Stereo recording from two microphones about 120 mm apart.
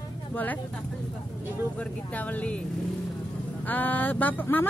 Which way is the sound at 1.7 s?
10° left (ahead or behind).